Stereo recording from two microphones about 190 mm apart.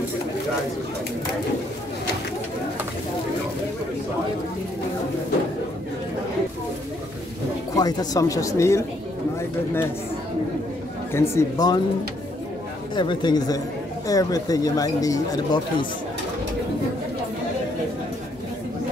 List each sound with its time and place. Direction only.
7.7 s speech: 20° left (ahead or behind)
11.1 s speech: 15° left (ahead or behind)
12.9 s speech: 25° left (ahead or behind)